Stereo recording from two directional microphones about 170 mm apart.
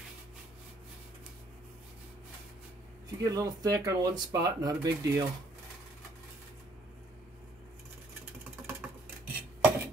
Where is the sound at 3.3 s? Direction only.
20° right (ahead or behind).